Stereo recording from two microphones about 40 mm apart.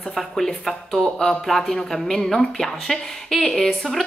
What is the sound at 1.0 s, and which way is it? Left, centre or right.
Speech, left.